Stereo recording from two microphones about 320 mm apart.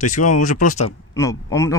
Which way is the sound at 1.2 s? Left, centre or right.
Centre.